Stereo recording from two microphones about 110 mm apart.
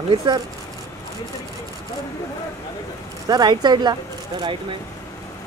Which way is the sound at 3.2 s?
40° right (ahead or behind).